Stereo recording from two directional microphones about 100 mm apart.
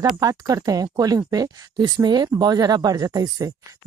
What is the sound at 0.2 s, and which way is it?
Speech, 35° right (ahead or behind).